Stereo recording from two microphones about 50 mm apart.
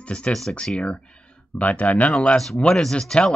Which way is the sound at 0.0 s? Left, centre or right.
Left.